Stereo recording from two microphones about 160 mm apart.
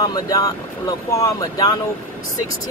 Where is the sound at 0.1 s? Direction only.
20° left (ahead or behind).